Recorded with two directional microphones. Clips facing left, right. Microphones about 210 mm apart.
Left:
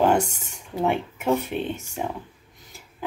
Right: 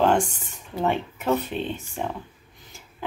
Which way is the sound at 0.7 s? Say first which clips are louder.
Left 1 dB; 10° left (ahead or behind).